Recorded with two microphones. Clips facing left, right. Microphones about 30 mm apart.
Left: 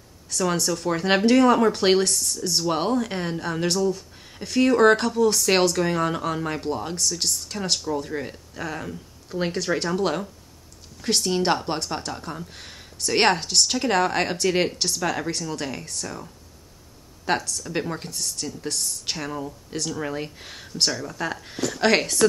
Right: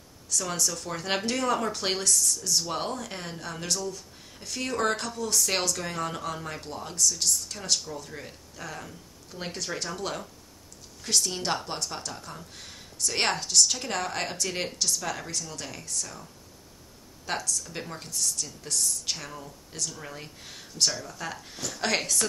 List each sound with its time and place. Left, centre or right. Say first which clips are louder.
0.6 s speech: left 7 dB; left
2.7 s speech: left 8 dB; left
4.6 s speech: left 11 dB; left
4.9 s speech: left 9 dB; left
7.0 s speech: left 1 dB; left
17.2 s speech: left 6 dB; left
17.6 s speech: left 9 dB; left
19.1 s speech: left 9 dB; left
21.8 s speech: left 7 dB; left